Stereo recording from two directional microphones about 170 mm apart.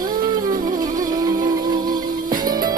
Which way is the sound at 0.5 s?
55° right (ahead or behind).